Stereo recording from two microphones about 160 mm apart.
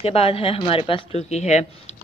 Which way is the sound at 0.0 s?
40° left (ahead or behind).